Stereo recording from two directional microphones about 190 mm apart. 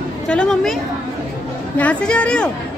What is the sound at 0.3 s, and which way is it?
Speech, 5° left (ahead or behind).